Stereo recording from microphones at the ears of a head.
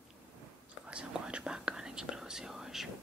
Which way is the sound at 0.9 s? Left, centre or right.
Centre.